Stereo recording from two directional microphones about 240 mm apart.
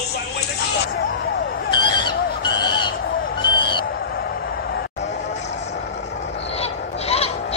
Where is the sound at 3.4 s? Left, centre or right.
Centre.